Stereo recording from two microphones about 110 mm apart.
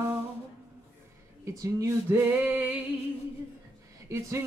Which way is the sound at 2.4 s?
15° right (ahead or behind).